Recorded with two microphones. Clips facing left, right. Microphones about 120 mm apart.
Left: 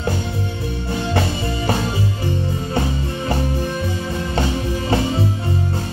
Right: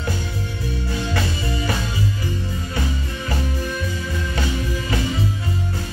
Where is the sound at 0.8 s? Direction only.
25° left (ahead or behind).